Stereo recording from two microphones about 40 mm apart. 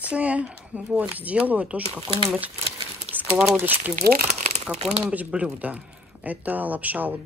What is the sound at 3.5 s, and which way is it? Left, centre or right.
Speech, right.